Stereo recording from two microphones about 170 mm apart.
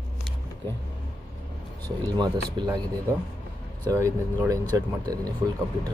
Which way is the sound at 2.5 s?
25° right (ahead or behind).